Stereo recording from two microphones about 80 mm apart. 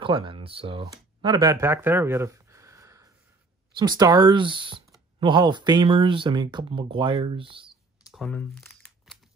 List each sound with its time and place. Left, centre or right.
0.0 s speech: right
1.6 s a sound: right
3.7 s speech: right
4.3 s speech: right
5.2 s speech: right